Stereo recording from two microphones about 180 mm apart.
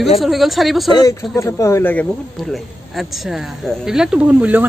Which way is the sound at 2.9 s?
Centre (ahead or behind).